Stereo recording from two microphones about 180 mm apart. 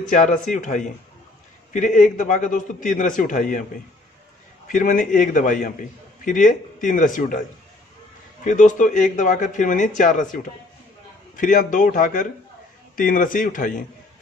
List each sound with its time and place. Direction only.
0.1 s a man's voice: 45° left (ahead or behind)
4.6 s a man's voice: 45° left (ahead or behind)
8.5 s a man's voice: 45° left (ahead or behind)